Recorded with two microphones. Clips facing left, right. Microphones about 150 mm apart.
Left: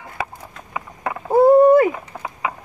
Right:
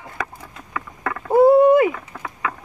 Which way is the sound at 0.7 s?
20° left (ahead or behind).